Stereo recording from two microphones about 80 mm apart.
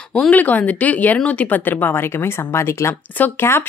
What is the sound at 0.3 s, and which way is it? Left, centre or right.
A woman's voice, centre.